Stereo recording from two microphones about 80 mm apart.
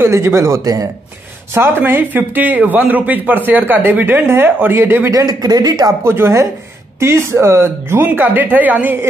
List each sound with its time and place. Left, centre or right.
0.0 s speech: right
1.5 s speech: right
5.1 s speech: right
6.0 s speech: right